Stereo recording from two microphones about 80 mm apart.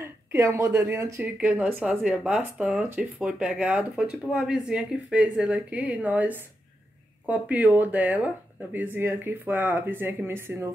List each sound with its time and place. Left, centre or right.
0.0 s speech: right
1.2 s speech: centre